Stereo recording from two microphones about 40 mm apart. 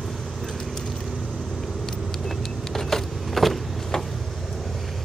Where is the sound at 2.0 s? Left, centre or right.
Centre.